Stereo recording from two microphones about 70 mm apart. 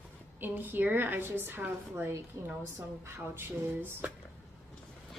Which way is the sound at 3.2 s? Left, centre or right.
Right.